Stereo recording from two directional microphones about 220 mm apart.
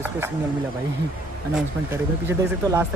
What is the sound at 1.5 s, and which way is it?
Speech, 10° right (ahead or behind).